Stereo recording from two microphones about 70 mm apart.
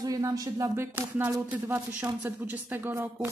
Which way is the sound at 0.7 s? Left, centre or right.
Right.